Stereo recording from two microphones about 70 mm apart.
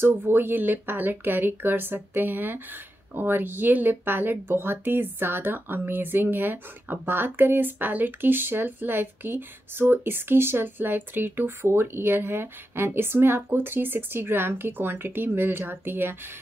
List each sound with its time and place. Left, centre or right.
0.0 s a woman's voice: right